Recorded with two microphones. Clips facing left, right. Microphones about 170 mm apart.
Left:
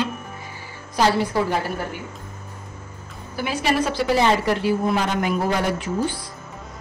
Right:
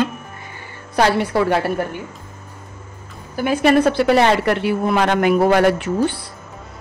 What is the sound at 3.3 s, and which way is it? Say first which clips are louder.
A woman's voice: right 7 dB; 50° right (ahead or behind).